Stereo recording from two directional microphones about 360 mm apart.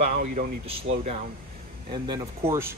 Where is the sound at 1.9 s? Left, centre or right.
Centre.